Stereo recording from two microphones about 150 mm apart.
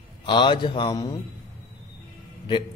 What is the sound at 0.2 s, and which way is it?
Speech, 30° left (ahead or behind).